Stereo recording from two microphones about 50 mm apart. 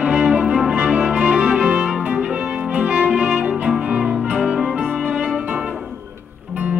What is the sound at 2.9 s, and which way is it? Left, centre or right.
Music, centre.